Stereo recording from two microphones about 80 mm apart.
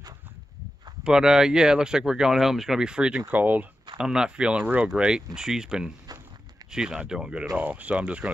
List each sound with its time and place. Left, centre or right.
1.0 s speech: centre
4.0 s speech: centre